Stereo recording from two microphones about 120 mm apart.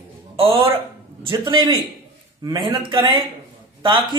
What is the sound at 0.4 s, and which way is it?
Speech, 50° right (ahead or behind).